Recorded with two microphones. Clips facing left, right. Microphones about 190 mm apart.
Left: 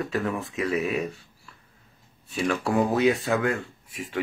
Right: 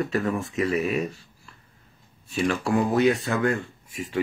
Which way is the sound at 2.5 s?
5° left (ahead or behind).